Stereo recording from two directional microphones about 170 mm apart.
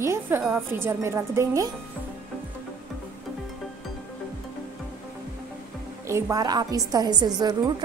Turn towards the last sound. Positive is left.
turn(degrees=-25)  # may be behind; listen again after turning